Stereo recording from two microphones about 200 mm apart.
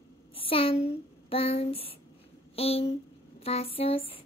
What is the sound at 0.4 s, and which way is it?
A woman's voice, 25° left (ahead or behind).